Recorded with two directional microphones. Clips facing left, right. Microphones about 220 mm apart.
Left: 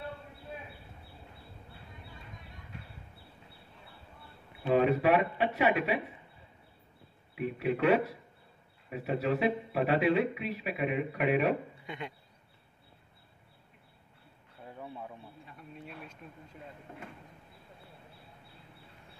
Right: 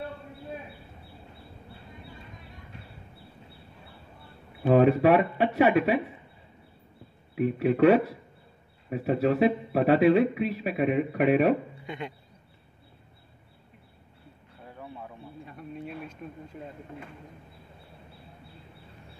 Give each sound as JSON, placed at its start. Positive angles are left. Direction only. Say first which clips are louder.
{"t": 4.6, "sound": "a man's voice", "louder": "right 6 dB", "side_deg": -45}
{"t": 7.3, "sound": "a man's voice", "louder": "right 8 dB", "side_deg": -40}